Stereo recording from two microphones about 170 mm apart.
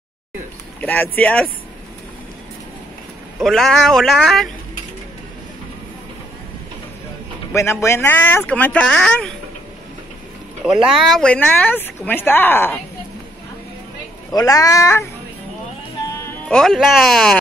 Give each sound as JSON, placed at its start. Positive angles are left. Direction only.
{"t": 0.7, "sound": "speech", "side_deg": 10}
{"t": 3.3, "sound": "speech", "side_deg": 0}
{"t": 7.5, "sound": "speech", "side_deg": 15}
{"t": 10.6, "sound": "speech", "side_deg": 0}
{"t": 14.3, "sound": "speech", "side_deg": 20}
{"t": 16.4, "sound": "speech", "side_deg": 5}